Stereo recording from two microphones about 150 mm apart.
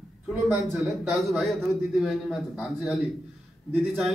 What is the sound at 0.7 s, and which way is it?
A man's voice, centre (ahead or behind).